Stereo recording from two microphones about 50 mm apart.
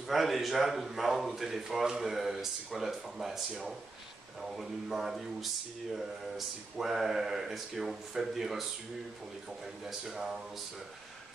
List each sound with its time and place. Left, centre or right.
0.0 s a man's voice: centre
9.8 s a man's voice: centre